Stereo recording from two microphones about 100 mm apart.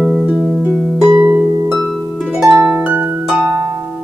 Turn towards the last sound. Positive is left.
turn(degrees=-15)  # may be behind; listen again after turning